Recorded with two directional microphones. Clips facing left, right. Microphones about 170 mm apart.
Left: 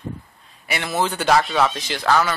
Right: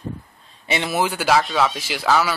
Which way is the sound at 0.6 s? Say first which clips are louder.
Right 1 dB; 15° right (ahead or behind).